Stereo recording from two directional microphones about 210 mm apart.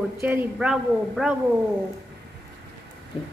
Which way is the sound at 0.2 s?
10° right (ahead or behind).